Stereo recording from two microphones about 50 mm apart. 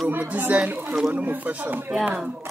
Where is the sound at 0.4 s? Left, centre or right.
Right.